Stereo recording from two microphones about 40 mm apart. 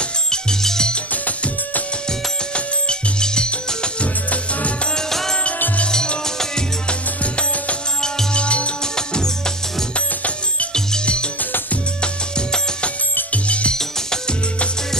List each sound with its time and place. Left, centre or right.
0.0 s music: centre
1.1 s music: left
2.0 s music: left
4.9 s music: centre
8.0 s music: left
8.8 s music: centre
9.9 s music: left
10.7 s music: centre
13.7 s music: centre